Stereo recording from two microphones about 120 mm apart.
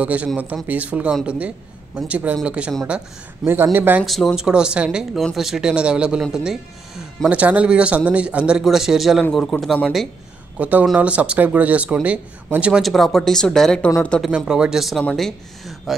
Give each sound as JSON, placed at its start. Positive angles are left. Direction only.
{"t": 0.0, "sound": "speech", "side_deg": -10}
{"t": 4.0, "sound": "speech", "side_deg": 0}
{"t": 10.6, "sound": "speech", "side_deg": -10}
{"t": 12.8, "sound": "speech", "side_deg": 0}
{"t": 14.3, "sound": "speech", "side_deg": -5}